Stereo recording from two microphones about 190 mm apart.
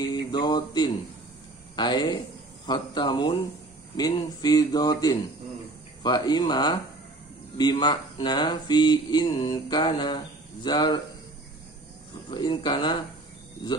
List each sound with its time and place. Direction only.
0.1 s music: 20° left (ahead or behind)
1.8 s speech: 25° left (ahead or behind)
12.3 s speech: 25° left (ahead or behind)